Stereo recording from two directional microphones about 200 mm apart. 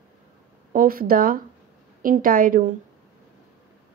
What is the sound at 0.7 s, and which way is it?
A woman's voice, 45° right (ahead or behind).